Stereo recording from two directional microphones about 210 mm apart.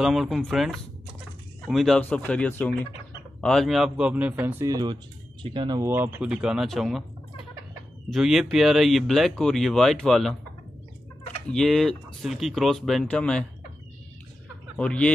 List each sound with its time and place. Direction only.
0.0 s speech: centre (ahead or behind)
1.7 s speech: centre (ahead or behind)
8.1 s speech: centre (ahead or behind)
11.5 s speech: centre (ahead or behind)
14.8 s speech: 5° left (ahead or behind)